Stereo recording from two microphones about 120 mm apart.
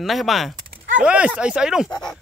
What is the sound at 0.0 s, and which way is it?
Speech, centre (ahead or behind).